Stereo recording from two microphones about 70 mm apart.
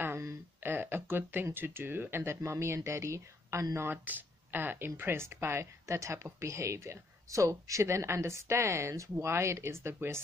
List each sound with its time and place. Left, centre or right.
0.7 s speech: right
3.7 s speech: right